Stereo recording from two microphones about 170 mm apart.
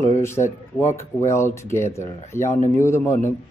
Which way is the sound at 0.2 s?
15° left (ahead or behind).